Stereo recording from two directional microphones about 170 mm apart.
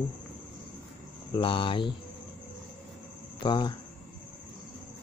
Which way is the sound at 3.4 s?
25° left (ahead or behind).